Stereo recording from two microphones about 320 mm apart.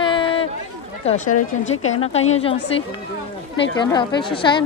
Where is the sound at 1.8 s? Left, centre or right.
Centre.